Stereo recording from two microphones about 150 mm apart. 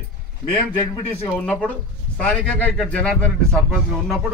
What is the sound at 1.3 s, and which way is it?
A man's voice, 10° left (ahead or behind).